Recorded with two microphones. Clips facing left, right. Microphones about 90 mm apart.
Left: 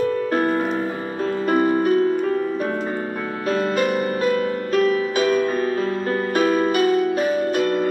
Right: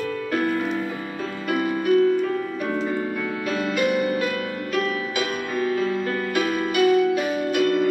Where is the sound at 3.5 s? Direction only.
40° left (ahead or behind).